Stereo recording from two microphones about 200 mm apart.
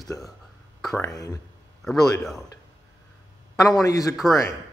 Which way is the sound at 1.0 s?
15° left (ahead or behind).